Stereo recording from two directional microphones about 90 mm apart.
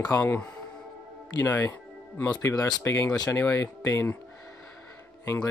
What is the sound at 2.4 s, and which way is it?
Speech, 30° left (ahead or behind).